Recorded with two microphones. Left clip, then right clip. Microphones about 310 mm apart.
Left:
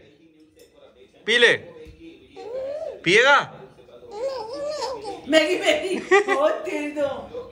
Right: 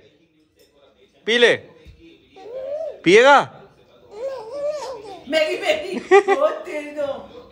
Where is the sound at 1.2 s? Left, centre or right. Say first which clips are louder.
Right 2 dB; centre.